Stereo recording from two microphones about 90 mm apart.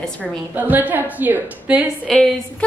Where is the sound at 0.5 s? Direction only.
20° right (ahead or behind).